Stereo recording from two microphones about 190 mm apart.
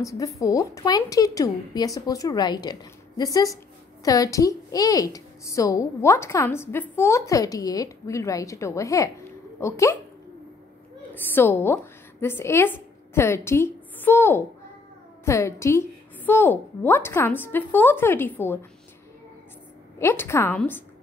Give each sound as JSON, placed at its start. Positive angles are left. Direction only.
{"t": 0.0, "sound": "a woman's voice", "side_deg": 15}
{"t": 11.3, "sound": "a woman's voice", "side_deg": 10}
{"t": 20.0, "sound": "a woman's voice", "side_deg": 15}